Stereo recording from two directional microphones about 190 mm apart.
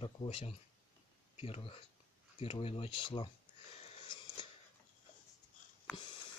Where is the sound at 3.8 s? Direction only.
25° left (ahead or behind).